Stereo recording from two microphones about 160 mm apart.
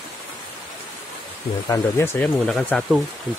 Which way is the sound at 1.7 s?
15° left (ahead or behind).